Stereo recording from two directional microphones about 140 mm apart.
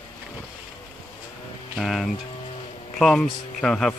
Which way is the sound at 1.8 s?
Centre (ahead or behind).